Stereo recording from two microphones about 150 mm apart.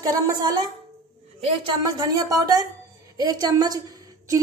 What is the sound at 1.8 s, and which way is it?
A woman's voice, 25° right (ahead or behind).